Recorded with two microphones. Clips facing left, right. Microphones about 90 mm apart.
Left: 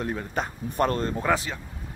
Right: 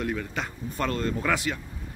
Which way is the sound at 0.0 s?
30° left (ahead or behind).